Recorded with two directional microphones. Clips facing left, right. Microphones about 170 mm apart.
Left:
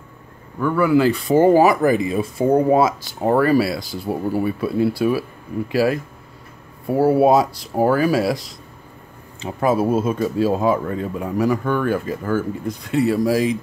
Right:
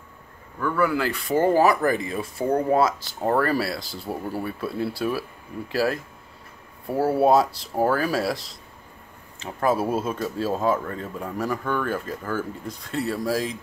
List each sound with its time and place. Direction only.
0.6 s speech: 10° left (ahead or behind)
3.3 s speech: 5° left (ahead or behind)
9.4 s speech: 15° left (ahead or behind)
9.8 s speech: centre (ahead or behind)